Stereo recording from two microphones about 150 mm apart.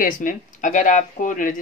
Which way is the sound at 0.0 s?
65° left (ahead or behind).